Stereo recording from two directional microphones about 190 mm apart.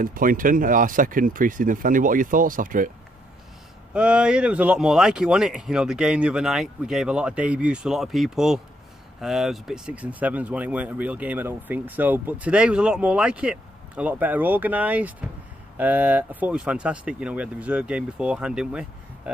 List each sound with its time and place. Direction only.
0.0 s speech: 45° right (ahead or behind)
3.9 s speech: 5° right (ahead or behind)